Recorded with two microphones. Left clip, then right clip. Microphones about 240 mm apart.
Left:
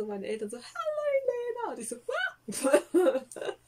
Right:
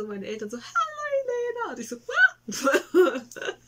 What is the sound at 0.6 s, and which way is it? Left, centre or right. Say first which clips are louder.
Speech: right 12 dB; right.